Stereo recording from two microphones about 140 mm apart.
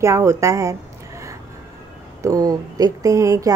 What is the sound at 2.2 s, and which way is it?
A woman's voice, 25° right (ahead or behind).